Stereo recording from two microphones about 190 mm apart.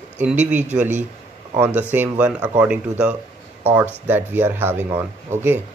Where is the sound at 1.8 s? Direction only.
10° right (ahead or behind).